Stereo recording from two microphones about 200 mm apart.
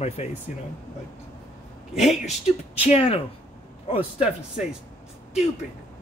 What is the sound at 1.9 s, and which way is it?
Speech, centre (ahead or behind).